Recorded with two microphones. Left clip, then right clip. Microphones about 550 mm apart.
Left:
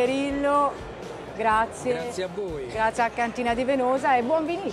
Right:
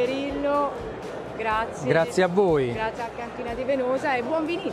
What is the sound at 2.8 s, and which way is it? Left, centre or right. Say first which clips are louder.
Speech: left 6 dB; left.